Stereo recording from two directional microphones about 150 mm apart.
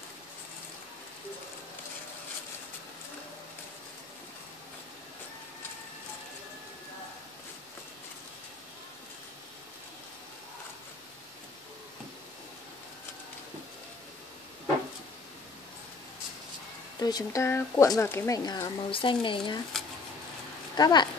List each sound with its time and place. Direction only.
17.0 s speech: 20° left (ahead or behind)
20.7 s speech: 25° left (ahead or behind)